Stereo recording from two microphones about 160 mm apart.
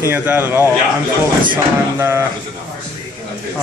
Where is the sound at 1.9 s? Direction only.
15° right (ahead or behind).